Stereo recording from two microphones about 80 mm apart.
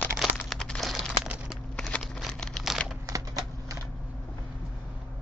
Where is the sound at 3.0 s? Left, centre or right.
Right.